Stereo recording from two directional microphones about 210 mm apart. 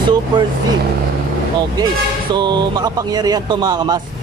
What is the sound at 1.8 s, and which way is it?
Speech, 20° right (ahead or behind).